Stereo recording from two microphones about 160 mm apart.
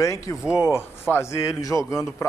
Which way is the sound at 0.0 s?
20° left (ahead or behind).